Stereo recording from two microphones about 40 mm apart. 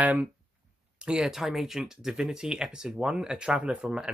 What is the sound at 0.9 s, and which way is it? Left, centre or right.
Speech, right.